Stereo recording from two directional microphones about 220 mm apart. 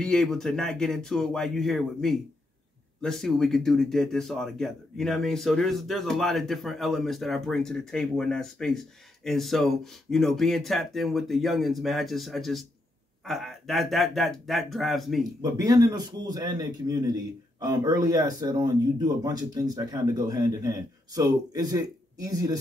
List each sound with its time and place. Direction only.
0.0 s speech: centre (ahead or behind)
15.5 s a man's voice: 15° right (ahead or behind)